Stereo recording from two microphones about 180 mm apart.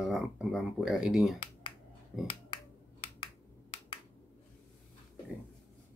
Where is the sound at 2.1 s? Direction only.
Centre (ahead or behind).